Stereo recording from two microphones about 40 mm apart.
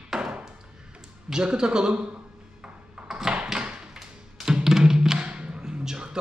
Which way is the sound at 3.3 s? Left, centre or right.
Right.